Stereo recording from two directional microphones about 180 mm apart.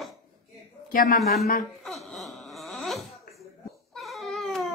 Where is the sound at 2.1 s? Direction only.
Centre (ahead or behind).